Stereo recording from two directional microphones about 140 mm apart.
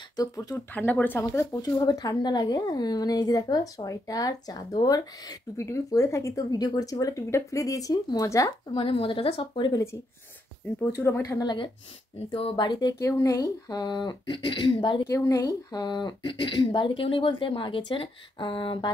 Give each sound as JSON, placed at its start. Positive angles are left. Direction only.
{"t": 0.1, "sound": "speech", "side_deg": 25}
{"t": 0.7, "sound": "speech", "side_deg": 10}
{"t": 8.7, "sound": "speech", "side_deg": 40}
{"t": 10.8, "sound": "speech", "side_deg": 15}
{"t": 13.0, "sound": "speech", "side_deg": 20}
{"t": 15.0, "sound": "speech", "side_deg": 20}